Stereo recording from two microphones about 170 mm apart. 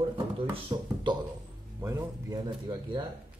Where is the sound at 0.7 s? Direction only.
20° right (ahead or behind).